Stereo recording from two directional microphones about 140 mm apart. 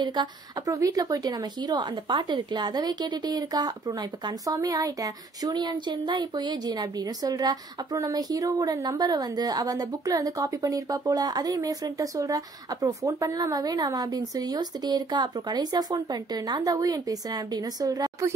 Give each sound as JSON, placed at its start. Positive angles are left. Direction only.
{"t": 0.0, "sound": "a woman's voice", "side_deg": -30}